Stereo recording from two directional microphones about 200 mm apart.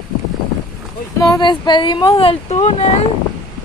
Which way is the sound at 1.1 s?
20° left (ahead or behind).